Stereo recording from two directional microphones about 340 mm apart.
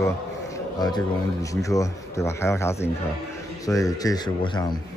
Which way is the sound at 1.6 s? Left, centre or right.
Centre.